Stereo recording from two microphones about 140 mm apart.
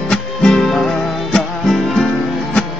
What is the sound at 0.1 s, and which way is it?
Music, 5° left (ahead or behind).